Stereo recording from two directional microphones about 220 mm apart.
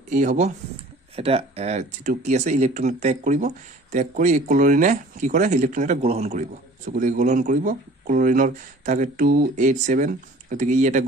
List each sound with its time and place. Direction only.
0.1 s speech: 35° right (ahead or behind)